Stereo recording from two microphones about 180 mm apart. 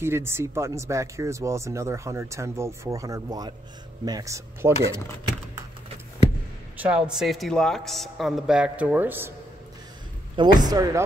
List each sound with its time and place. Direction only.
0.0 s speech: 15° right (ahead or behind)
6.8 s a man's voice: 5° right (ahead or behind)
10.3 s speech: 25° right (ahead or behind)